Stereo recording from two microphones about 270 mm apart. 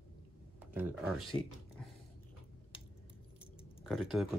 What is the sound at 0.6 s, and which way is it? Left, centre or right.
Speech, centre.